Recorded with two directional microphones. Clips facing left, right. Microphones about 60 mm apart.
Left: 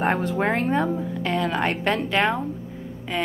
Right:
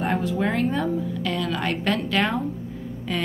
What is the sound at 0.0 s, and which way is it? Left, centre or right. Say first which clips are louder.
A woman's voice: left 2 dB; left.